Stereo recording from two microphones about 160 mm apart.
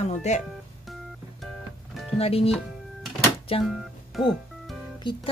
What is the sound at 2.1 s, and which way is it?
Speech, 40° left (ahead or behind).